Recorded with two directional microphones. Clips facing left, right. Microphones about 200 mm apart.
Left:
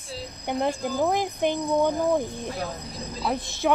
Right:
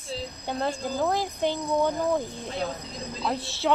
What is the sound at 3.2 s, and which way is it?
Speech, 15° left (ahead or behind).